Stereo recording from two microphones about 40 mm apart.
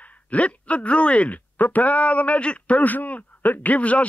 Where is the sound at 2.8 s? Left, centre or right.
Left.